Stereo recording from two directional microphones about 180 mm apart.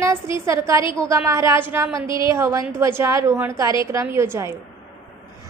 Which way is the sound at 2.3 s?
15° right (ahead or behind).